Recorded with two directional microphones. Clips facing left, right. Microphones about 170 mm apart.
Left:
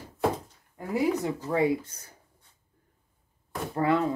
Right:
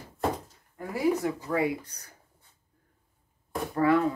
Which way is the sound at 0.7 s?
25° left (ahead or behind).